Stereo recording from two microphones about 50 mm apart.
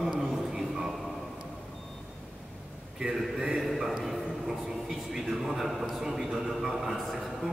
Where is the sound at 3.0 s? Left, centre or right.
Centre.